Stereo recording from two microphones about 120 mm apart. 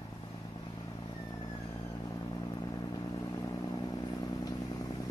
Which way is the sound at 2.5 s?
35° left (ahead or behind).